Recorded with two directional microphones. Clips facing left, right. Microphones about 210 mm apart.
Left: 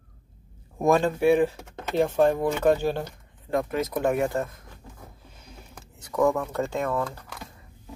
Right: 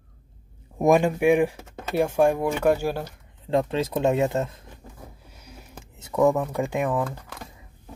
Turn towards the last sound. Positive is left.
turn(degrees=-15)  # may be behind; listen again after turning